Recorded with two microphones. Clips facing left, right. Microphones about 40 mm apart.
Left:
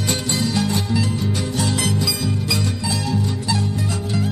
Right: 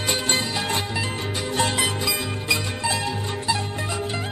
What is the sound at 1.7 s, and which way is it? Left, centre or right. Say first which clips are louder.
Music: left 2 dB; right.